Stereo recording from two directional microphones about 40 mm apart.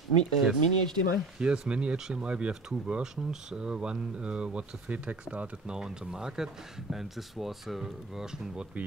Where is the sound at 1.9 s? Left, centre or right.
Centre.